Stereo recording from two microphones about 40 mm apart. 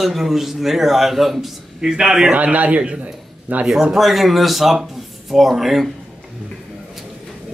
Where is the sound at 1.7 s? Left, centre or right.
Centre.